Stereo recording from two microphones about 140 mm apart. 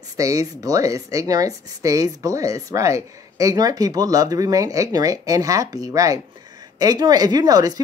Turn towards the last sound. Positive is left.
turn(degrees=-25)  # may be behind; listen again after turning